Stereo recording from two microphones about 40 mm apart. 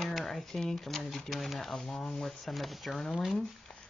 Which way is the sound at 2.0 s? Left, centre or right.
Centre.